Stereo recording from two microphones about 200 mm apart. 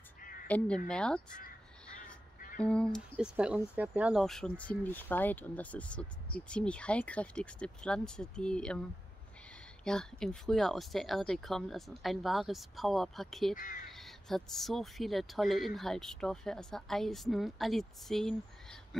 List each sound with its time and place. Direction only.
0.5 s speech: 5° left (ahead or behind)
9.8 s speech: 5° left (ahead or behind)
13.6 s speech: 40° left (ahead or behind)
13.9 s speech: centre (ahead or behind)